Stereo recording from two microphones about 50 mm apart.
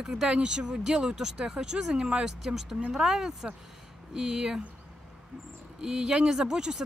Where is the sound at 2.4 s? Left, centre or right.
Centre.